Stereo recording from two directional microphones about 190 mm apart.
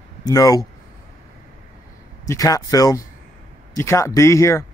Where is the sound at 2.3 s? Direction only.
20° left (ahead or behind).